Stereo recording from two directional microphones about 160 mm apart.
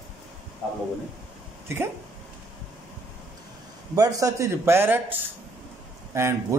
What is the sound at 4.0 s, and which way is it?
A man's voice, 20° right (ahead or behind).